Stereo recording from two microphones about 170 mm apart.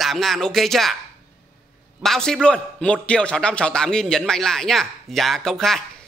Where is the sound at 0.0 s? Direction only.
Centre (ahead or behind).